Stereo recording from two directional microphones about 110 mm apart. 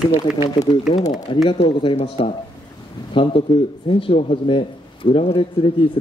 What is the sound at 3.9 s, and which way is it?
A man's voice, 65° left (ahead or behind).